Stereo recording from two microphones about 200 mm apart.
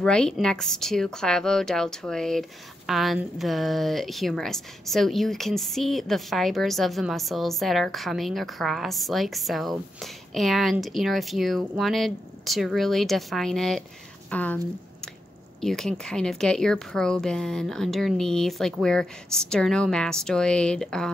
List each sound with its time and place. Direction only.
0.0 s speech: 5° left (ahead or behind)